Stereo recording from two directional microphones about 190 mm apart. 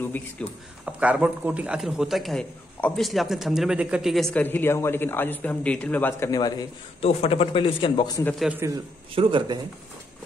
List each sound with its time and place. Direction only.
0.0 s speech: 10° left (ahead or behind)
0.8 s a man's voice: 5° right (ahead or behind); by 6.5 s 15° left (ahead or behind)
7.0 s a man's voice: 30° left (ahead or behind)
8.4 s a man's voice: 5° right (ahead or behind)
9.1 s speech: 25° right (ahead or behind)